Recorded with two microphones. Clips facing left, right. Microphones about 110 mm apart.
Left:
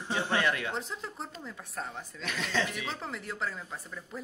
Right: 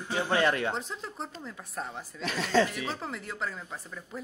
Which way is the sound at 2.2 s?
35° right (ahead or behind).